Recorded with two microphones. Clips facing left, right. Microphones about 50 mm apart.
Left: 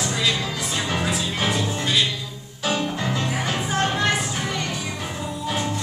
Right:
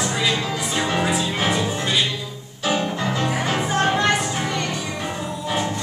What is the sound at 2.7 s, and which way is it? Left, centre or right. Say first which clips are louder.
Music: right 2 dB; centre.